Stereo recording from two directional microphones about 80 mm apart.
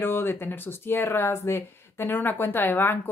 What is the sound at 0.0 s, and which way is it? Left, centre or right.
Speech, left.